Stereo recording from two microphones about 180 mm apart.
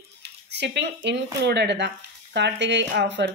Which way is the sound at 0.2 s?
70° right (ahead or behind).